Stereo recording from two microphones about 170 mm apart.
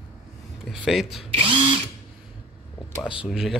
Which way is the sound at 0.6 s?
Centre (ahead or behind).